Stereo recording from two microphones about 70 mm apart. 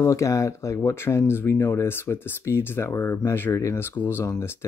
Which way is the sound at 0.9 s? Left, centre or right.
Left.